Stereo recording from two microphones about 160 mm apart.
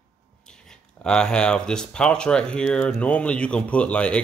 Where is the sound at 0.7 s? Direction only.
5° left (ahead or behind).